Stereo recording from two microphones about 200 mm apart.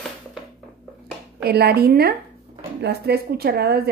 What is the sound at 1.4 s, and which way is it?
A woman's voice, 55° right (ahead or behind).